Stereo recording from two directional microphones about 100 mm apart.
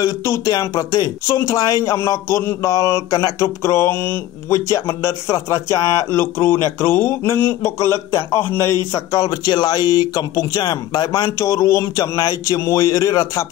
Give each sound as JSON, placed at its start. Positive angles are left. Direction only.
{"t": 0.0, "sound": "speech", "side_deg": 30}
{"t": 6.1, "sound": "speech", "side_deg": 25}
{"t": 11.2, "sound": "speech", "side_deg": 30}